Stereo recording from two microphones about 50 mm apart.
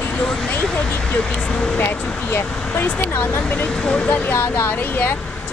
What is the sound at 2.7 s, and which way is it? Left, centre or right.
Speech, left.